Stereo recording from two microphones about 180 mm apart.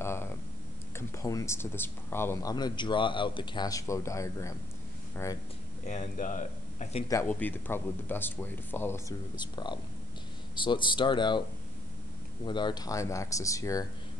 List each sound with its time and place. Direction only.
0.0 s a sound: 15° left (ahead or behind)
0.9 s speech: 15° left (ahead or behind)
5.9 s speech: 45° left (ahead or behind)
7.2 s speech: 10° left (ahead or behind)
9.4 s speech: 25° left (ahead or behind)
12.4 s speech: 25° left (ahead or behind)